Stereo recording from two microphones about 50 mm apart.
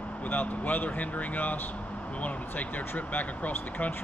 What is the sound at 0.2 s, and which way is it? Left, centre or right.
Speech, left.